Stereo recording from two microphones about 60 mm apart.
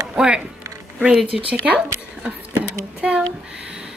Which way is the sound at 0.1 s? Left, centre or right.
Centre.